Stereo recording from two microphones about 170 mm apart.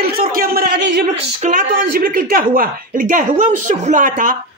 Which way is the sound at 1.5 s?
55° right (ahead or behind).